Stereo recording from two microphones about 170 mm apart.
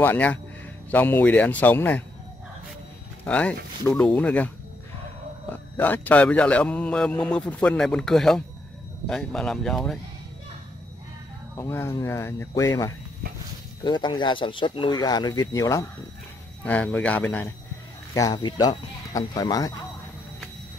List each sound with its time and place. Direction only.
0.0 s a man's voice: 10° left (ahead or behind)
3.3 s a man's voice: 10° left (ahead or behind)
5.5 s a man's voice: 10° left (ahead or behind)
11.5 s a man's voice: 15° left (ahead or behind)
16.6 s a man's voice: 10° left (ahead or behind)
18.1 s speech: 20° left (ahead or behind)